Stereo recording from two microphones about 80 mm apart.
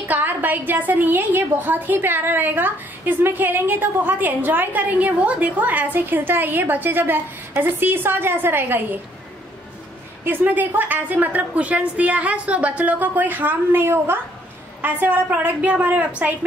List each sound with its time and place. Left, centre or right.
0.1 s a woman's voice: right
10.2 s a woman's voice: right